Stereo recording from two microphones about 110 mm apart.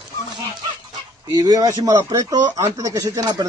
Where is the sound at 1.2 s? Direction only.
35° right (ahead or behind).